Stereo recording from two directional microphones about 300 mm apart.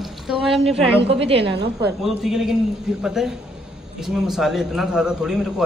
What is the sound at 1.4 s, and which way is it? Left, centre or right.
Speech, right.